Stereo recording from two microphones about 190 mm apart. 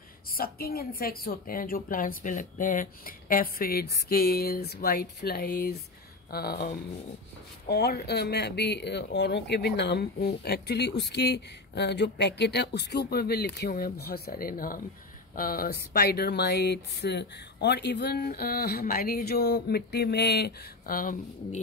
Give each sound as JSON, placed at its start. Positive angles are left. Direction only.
{"t": 0.3, "sound": "a woman's voice", "side_deg": 55}